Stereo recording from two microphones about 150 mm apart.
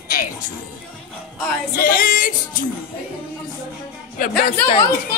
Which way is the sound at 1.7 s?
75° left (ahead or behind).